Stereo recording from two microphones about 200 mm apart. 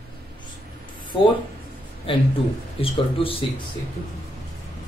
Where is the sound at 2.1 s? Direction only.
25° left (ahead or behind).